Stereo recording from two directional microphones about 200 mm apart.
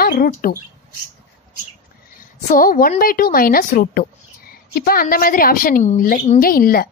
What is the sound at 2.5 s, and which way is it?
A woman's voice, 45° left (ahead or behind).